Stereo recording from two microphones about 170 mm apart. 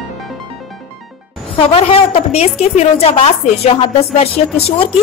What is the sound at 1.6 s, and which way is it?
A woman's voice, 35° left (ahead or behind).